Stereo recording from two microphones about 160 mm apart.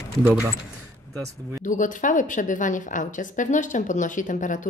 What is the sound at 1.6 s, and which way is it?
A woman's voice, 55° left (ahead or behind).